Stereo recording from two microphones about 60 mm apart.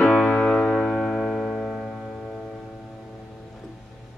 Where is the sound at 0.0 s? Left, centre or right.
Centre.